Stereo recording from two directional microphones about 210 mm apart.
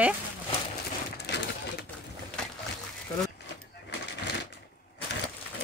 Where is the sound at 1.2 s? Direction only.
50° left (ahead or behind).